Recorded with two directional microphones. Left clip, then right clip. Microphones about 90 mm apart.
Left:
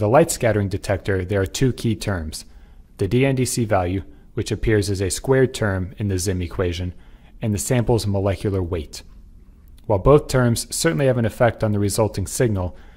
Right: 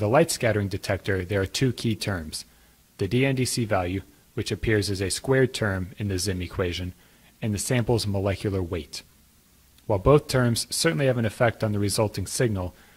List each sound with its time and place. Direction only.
0.0 s speech: 25° right (ahead or behind)